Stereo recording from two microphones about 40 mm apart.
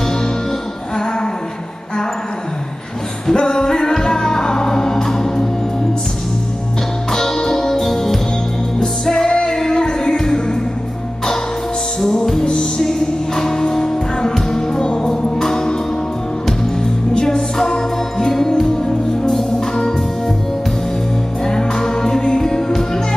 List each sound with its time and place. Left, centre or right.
3.3 s music: centre
7.1 s music: centre
12.0 s music: centre
17.1 s music: centre
21.5 s music: centre